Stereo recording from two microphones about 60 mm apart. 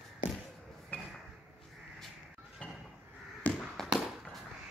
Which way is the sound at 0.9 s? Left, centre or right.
Left.